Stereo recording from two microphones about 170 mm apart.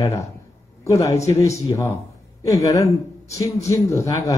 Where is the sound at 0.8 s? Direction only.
20° left (ahead or behind).